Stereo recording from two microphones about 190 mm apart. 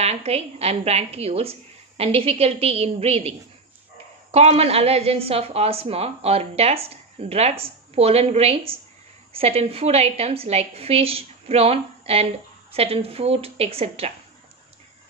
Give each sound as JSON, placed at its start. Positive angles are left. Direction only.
{"t": 0.0, "sound": "a woman's voice", "side_deg": -35}